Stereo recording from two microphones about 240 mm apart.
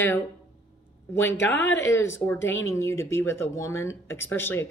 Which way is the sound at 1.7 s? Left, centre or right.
Centre.